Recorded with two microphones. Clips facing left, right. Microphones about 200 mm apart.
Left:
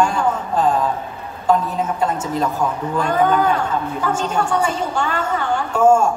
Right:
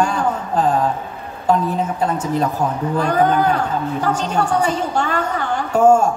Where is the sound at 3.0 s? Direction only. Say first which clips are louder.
Even; 40° right (ahead or behind).